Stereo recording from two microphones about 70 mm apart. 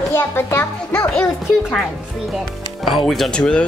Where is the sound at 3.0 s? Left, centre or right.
Centre.